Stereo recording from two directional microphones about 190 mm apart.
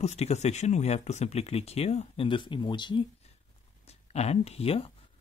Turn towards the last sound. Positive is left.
turn(degrees=30)  # may be behind; listen again after turning